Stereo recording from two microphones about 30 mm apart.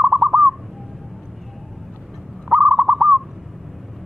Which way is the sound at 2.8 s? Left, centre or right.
Right.